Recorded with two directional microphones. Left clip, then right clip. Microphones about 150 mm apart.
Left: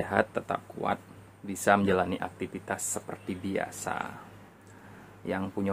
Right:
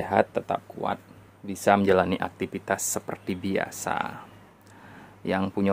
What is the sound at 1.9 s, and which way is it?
Speech, 65° right (ahead or behind).